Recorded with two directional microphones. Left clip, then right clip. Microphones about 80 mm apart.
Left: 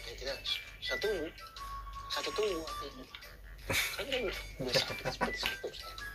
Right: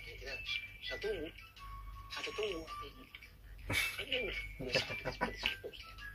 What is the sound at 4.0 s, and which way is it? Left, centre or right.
Speech, left.